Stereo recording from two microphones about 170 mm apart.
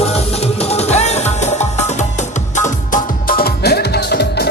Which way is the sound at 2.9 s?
60° left (ahead or behind).